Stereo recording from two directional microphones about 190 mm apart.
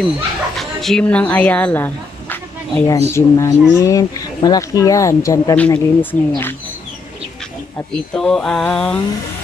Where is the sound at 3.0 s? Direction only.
15° left (ahead or behind).